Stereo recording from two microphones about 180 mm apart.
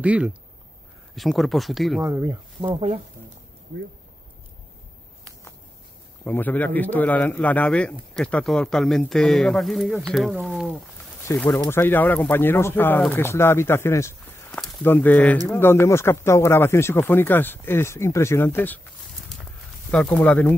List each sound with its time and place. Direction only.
0.0 s speech: 5° right (ahead or behind)
2.0 s speech: 20° right (ahead or behind)
6.2 s speech: 10° left (ahead or behind)
11.2 s speech: 10° left (ahead or behind)
19.9 s speech: 5° left (ahead or behind)